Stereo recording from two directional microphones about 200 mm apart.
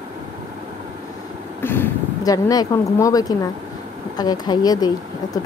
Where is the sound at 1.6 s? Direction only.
10° left (ahead or behind).